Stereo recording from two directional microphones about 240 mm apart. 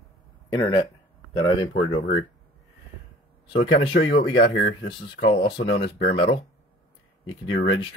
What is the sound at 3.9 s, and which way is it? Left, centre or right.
Speech, left.